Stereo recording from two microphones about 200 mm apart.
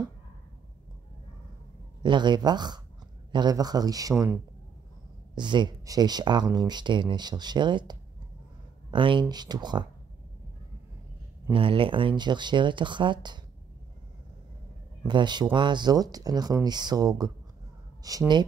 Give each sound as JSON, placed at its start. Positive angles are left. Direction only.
{"t": 2.0, "sound": "speech", "side_deg": -20}
{"t": 11.5, "sound": "speech", "side_deg": -25}
{"t": 15.0, "sound": "speech", "side_deg": -20}